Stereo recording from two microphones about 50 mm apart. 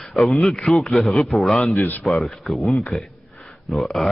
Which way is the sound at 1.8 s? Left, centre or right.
Left.